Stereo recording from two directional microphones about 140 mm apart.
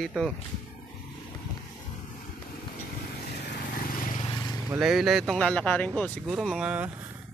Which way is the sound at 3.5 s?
80° left.